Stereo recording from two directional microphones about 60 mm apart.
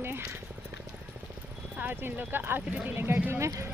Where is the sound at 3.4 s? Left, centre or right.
Right.